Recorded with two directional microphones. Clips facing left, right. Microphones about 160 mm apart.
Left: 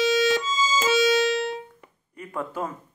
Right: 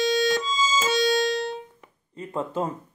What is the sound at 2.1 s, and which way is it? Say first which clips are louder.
Speech: right 3 dB; 25° right (ahead or behind).